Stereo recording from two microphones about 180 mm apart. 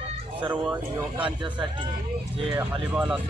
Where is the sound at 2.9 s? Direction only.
5° right (ahead or behind).